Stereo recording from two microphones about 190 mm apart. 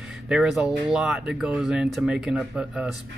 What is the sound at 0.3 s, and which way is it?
Speech, 5° right (ahead or behind).